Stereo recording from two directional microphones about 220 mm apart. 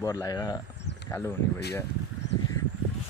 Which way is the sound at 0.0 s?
15° left (ahead or behind).